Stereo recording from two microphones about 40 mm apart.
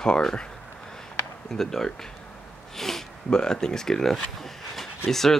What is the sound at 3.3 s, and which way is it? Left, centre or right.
Speech, centre.